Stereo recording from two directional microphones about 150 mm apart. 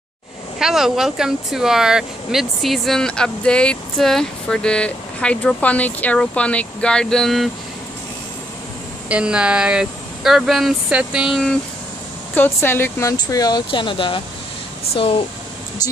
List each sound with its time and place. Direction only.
0.6 s speech: 5° right (ahead or behind)
9.1 s speech: 5° right (ahead or behind)
12.4 s speech: 15° left (ahead or behind); by 15.2 s 40° left (ahead or behind)